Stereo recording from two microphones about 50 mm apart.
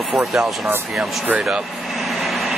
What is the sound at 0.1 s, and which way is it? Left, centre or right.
Speech, centre.